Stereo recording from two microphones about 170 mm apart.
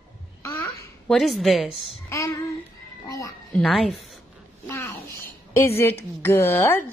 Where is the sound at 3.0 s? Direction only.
20° left (ahead or behind).